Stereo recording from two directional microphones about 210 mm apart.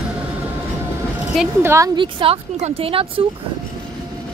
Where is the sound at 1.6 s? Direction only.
15° right (ahead or behind).